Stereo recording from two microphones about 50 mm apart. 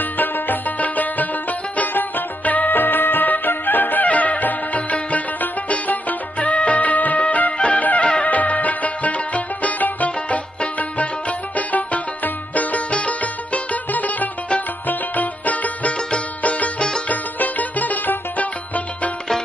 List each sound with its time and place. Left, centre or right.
0.0 s music: left